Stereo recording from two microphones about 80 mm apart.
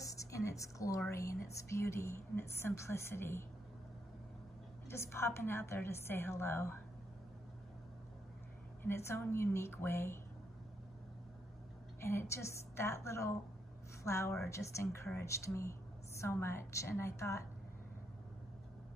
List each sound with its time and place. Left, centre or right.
0.0 s a woman's voice: left
4.8 s a woman's voice: left
8.8 s a woman's voice: left
12.0 s a woman's voice: left